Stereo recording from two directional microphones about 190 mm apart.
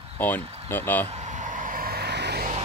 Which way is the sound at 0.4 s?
30° right (ahead or behind).